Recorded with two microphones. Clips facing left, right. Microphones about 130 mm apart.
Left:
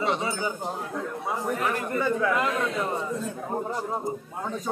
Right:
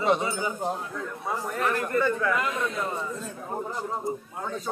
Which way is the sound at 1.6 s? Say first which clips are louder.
Right 5 dB; 15° left (ahead or behind).